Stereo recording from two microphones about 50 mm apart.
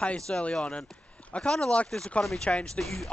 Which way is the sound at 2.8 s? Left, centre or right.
Centre.